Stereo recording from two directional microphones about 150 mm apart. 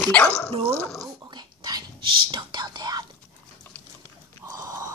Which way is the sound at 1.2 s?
25° right (ahead or behind).